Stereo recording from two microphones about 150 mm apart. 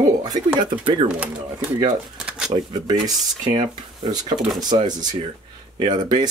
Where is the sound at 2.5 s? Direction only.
25° right (ahead or behind).